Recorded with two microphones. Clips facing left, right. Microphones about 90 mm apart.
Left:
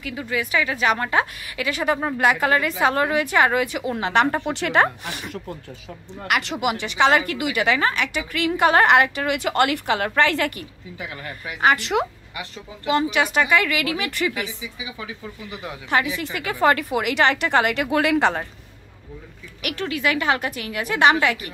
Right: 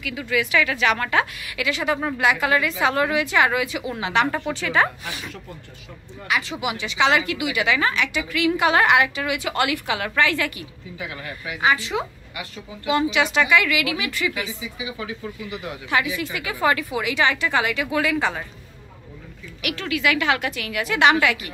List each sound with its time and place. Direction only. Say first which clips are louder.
0.0 s a woman's voice: right 2 dB; 30° left (ahead or behind)
1.6 s a woman's voice: left 1 dB; 40° left (ahead or behind)
4.6 s a woman's voice: left 2 dB; 60° left (ahead or behind)
6.2 s a woman's voice: left 2 dB; 60° left (ahead or behind); by 11.5 s 35° left (ahead or behind)
11.6 s speech: left 3 dB; 65° left (ahead or behind)
12.8 s a woman's voice: even; 45° left (ahead or behind)
15.9 s a woman's voice: left 1 dB; 45° left (ahead or behind)
19.6 s a woman's voice: even; 40° left (ahead or behind)